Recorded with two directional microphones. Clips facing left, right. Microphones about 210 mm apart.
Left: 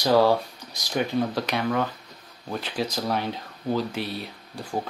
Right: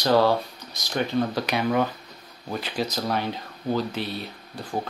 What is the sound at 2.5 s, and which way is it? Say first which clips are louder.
Speech: even; 5° right (ahead or behind).